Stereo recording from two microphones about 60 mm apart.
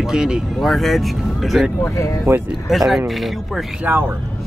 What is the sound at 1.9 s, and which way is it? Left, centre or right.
Speech, left.